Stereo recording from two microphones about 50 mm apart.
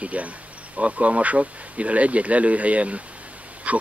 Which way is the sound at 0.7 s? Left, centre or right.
Right.